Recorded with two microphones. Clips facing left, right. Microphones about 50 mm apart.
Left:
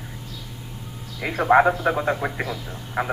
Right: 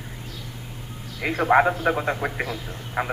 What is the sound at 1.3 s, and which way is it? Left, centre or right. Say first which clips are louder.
Speech: left 2 dB; centre.